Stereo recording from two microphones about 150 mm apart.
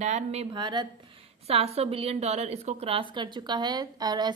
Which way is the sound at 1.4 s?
40° right (ahead or behind).